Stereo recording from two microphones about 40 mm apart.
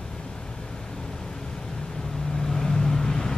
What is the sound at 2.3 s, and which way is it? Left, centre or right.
Vehicle, centre.